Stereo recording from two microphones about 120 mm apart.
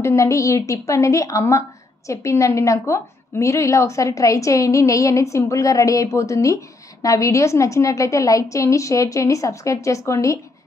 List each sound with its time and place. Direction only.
0.0 s a woman's voice: 25° left (ahead or behind)